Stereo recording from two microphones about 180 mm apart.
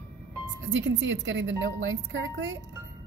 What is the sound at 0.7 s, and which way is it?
A woman's voice, 85° right.